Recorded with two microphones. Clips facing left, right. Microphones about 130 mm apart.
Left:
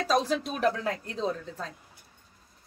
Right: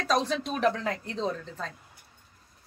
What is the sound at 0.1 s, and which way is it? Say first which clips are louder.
A woman's voice: even; 5° left (ahead or behind).